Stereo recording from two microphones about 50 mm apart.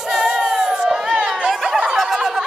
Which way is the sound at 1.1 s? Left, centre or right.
Centre.